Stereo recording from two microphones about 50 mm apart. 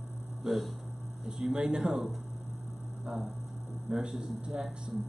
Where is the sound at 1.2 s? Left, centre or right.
Centre.